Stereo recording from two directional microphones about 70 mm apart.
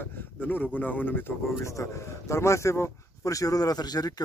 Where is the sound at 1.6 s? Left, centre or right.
Left.